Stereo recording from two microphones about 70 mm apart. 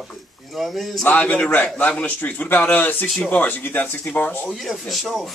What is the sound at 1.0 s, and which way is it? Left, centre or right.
Speech, centre.